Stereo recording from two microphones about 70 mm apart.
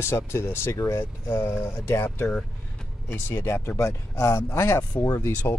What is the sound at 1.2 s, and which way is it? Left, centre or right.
Speech, left.